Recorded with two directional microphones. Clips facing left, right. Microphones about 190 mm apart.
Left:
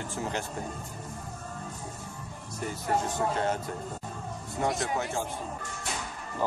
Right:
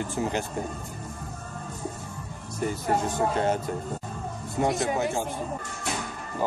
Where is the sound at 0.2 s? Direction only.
15° right (ahead or behind).